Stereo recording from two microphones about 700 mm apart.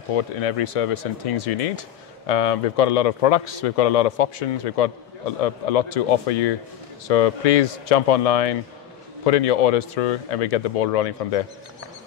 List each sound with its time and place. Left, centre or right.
0.1 s a man's voice: left